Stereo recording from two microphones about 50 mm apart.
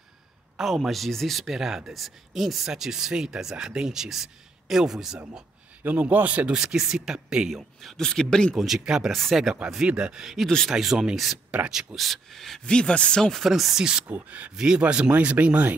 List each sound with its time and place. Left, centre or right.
0.6 s speech: centre
5.9 s a man's voice: right
6.5 s speech: centre
7.8 s speech: centre
8.5 s speech: centre
9.1 s speech: centre
9.8 s a man's voice: centre
10.2 s speech: centre
12.6 s speech: centre
13.4 s speech: centre
14.0 s a man's voice: right
14.5 s a man's voice: centre